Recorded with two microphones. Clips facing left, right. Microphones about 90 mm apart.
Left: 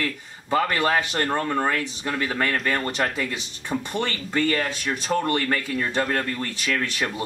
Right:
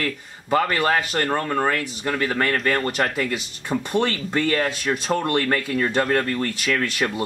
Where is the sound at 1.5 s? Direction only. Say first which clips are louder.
Right 2 dB; 5° right (ahead or behind).